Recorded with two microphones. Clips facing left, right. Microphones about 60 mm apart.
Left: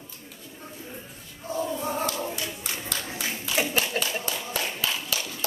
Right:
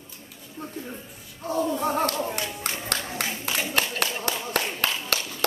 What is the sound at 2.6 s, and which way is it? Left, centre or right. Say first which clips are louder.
Clapping: right 3 dB; right.